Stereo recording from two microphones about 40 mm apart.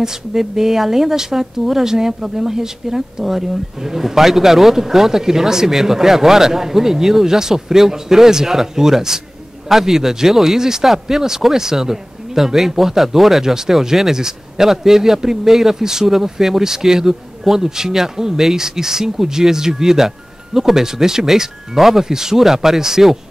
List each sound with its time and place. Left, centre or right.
0.0 s speech: centre